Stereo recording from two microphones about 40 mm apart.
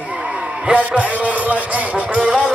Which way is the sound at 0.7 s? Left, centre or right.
Right.